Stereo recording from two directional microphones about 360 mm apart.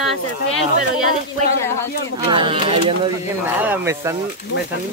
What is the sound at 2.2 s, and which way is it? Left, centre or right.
A woman's voice, centre.